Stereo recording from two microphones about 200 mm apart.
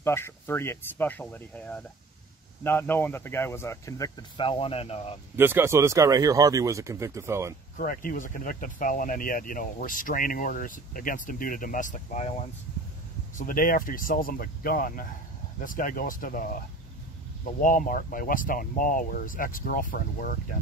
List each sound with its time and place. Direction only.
0.0 s speech: 10° left (ahead or behind); by 5.1 s 30° left (ahead or behind)
5.3 s speech: 10° right (ahead or behind)
7.7 s speech: 45° left (ahead or behind)
17.6 s speech: 45° left (ahead or behind)